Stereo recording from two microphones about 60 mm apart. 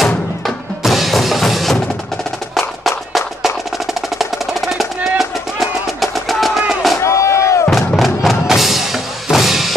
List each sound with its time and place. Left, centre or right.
0.8 s music: centre
7.0 s a sound: left
7.7 s music: centre